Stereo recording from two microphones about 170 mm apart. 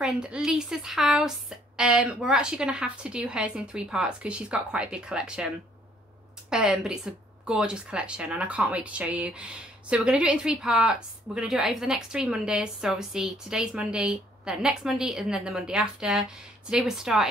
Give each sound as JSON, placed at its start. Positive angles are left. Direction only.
{"t": 0.0, "sound": "speech", "side_deg": -5}
{"t": 6.5, "sound": "speech", "side_deg": -5}